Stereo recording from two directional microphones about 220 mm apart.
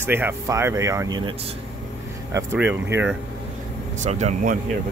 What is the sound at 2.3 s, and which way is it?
Speech, 10° right (ahead or behind).